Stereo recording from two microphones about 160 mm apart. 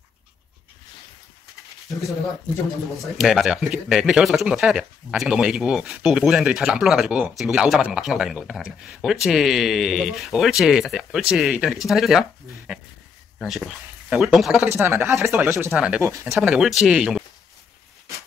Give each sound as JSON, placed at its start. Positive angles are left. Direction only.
{"t": 3.0, "sound": "speech", "side_deg": 0}
{"t": 14.7, "sound": "speech", "side_deg": -15}
{"t": 15.7, "sound": "speech", "side_deg": -5}
{"t": 16.0, "sound": "speech", "side_deg": -20}
{"t": 16.3, "sound": "speech", "side_deg": -5}